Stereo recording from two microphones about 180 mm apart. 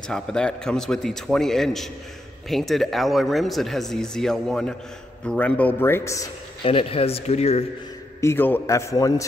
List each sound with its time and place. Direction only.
0.1 s speech: 5° left (ahead or behind)
6.6 s speech: 30° left (ahead or behind)
8.2 s speech: 15° left (ahead or behind)